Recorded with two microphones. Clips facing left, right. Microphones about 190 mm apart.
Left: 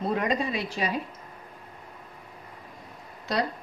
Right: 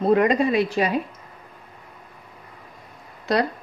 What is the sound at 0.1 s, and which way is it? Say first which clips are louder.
Speech: right 11 dB; 70° right (ahead or behind).